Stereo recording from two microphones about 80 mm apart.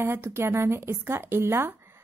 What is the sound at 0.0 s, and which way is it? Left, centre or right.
A woman's voice, right.